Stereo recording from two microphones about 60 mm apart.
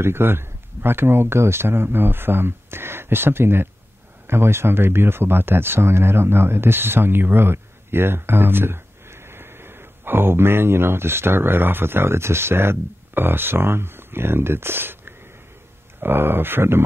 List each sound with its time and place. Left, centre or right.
0.0 s speech: right